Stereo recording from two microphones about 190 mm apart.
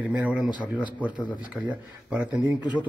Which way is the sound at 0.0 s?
10° right (ahead or behind).